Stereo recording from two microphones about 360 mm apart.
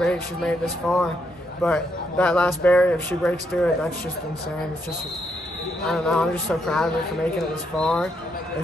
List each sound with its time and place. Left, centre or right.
0.0 s a man's voice: centre
5.9 s a man's voice: centre